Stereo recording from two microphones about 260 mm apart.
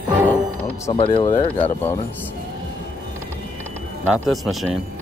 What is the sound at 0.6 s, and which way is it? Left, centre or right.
Speech, centre.